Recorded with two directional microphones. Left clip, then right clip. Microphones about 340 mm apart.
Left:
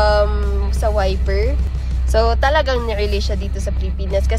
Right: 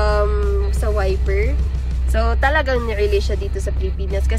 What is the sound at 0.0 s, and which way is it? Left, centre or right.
Music, centre.